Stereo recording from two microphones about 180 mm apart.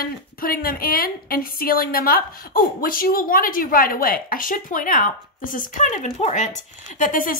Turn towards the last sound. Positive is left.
turn(degrees=50)  # may be behind; listen again after turning